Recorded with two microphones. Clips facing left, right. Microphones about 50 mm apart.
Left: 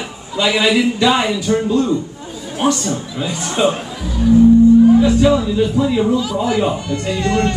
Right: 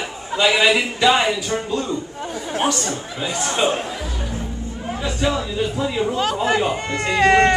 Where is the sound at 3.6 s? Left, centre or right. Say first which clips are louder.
Left 5 dB; centre.